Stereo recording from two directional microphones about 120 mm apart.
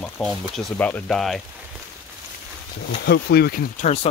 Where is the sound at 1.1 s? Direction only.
Centre (ahead or behind).